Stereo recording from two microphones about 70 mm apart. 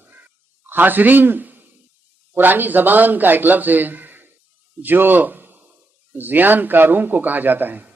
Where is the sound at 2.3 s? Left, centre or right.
Right.